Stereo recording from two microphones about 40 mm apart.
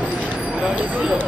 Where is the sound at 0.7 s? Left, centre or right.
Right.